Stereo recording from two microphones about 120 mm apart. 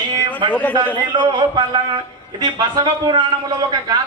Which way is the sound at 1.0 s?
40° right (ahead or behind).